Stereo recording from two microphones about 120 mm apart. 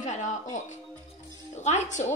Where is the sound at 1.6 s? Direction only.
75° left (ahead or behind).